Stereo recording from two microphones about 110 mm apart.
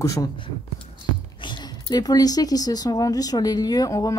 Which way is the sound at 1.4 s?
45° left (ahead or behind).